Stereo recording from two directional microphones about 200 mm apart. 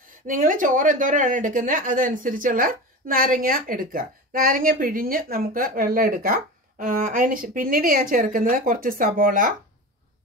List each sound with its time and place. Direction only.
0.3 s speech: 40° right (ahead or behind)